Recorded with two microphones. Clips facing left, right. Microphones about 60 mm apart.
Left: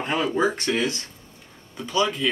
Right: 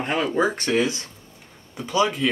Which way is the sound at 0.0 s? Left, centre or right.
Centre.